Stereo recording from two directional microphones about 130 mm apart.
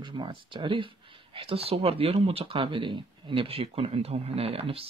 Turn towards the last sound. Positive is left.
turn(degrees=-50)  # may be behind; listen again after turning